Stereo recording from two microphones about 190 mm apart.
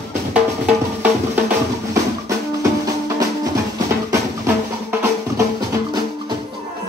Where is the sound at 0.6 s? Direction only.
10° right (ahead or behind).